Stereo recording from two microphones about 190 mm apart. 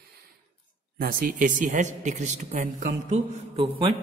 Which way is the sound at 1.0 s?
50° right (ahead or behind).